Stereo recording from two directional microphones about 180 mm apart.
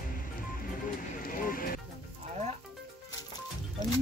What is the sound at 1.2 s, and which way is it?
Music, 50° left (ahead or behind).